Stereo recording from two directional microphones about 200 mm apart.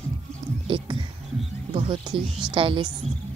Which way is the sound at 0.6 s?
25° right (ahead or behind).